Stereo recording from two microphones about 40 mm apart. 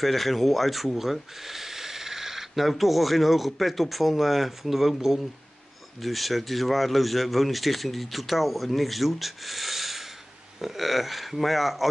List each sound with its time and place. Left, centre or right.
0.0 s speech: centre